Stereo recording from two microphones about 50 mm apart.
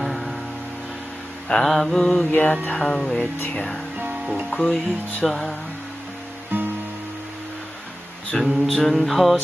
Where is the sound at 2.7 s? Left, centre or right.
Centre.